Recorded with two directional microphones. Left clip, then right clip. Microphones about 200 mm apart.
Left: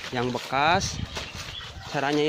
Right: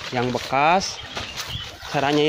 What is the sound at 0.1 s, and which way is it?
Speech, 5° left (ahead or behind).